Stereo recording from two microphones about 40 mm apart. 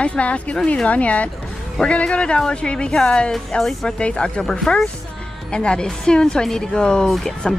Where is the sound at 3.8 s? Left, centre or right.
Left.